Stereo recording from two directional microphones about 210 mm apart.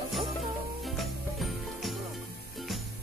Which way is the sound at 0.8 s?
Centre (ahead or behind).